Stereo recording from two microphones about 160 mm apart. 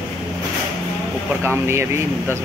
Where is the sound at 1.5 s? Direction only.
15° right (ahead or behind).